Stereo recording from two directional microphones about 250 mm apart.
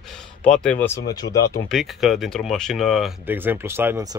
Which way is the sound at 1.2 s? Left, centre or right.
Left.